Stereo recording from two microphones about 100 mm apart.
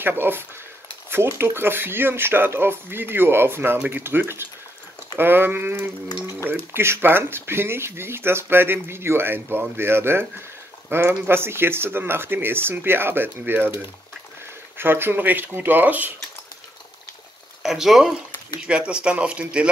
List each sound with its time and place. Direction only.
0.0 s speech: 20° right (ahead or behind)
14.8 s speech: 20° right (ahead or behind)
17.6 s speech: 5° right (ahead or behind)